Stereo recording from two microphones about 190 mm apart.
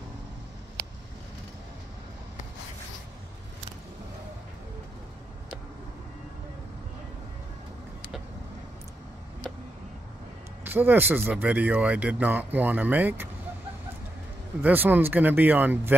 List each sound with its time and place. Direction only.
10.6 s speech: 10° right (ahead or behind)
14.6 s speech: 10° right (ahead or behind)